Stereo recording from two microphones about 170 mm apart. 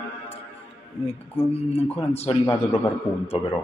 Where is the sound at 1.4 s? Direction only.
35° left (ahead or behind).